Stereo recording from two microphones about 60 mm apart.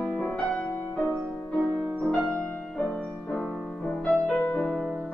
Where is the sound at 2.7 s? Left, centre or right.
Centre.